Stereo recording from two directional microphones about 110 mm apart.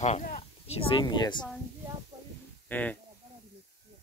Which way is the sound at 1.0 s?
40° left (ahead or behind).